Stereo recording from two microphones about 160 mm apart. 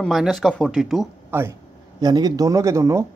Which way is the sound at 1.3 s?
15° right (ahead or behind).